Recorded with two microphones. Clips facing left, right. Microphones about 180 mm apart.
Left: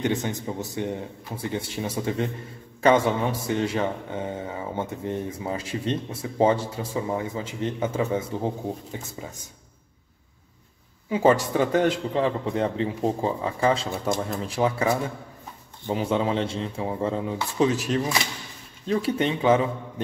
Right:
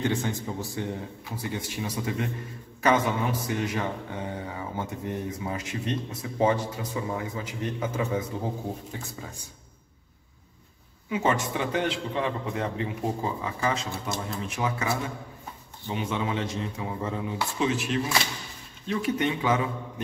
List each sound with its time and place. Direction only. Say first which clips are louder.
0.0 s speech: left 2 dB; 20° left (ahead or behind)
11.1 s a man's voice: left 6 dB; 30° left (ahead or behind)
15.9 s a man's voice: left 5 dB; 35° left (ahead or behind)